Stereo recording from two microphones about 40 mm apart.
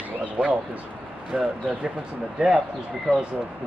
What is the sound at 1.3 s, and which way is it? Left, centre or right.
Speech, centre.